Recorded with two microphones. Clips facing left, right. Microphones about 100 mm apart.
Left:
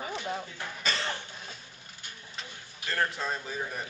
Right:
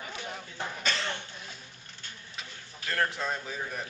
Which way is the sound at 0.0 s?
30° left (ahead or behind).